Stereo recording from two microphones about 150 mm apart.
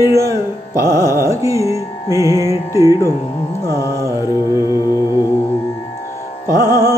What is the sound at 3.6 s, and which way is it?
Carnatic music, 20° left (ahead or behind).